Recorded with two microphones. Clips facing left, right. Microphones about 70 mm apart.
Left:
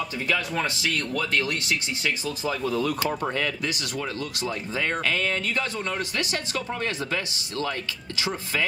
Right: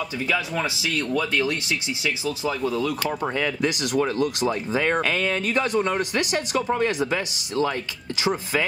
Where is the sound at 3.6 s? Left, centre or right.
Right.